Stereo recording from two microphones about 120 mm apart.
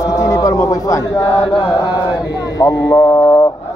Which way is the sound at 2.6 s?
30° left (ahead or behind).